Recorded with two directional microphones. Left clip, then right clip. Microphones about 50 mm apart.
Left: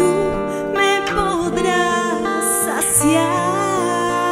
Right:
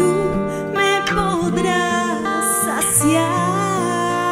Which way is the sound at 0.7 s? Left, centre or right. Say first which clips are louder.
Even; left.